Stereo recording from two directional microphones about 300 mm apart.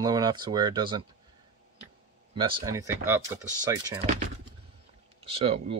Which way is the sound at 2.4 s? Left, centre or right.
Centre.